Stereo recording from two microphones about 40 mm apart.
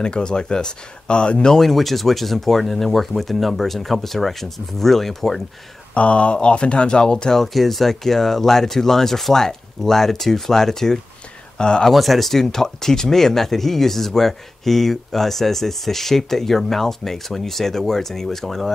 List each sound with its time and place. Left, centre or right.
0.0 s speech: left
1.5 s speech: centre
5.9 s speech: left
7.4 s speech: centre
11.9 s speech: centre